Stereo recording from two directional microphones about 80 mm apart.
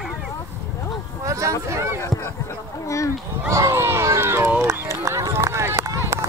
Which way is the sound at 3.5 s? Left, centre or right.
Right.